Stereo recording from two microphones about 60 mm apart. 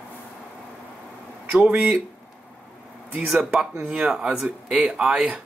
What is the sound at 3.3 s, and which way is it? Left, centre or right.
Speech, centre.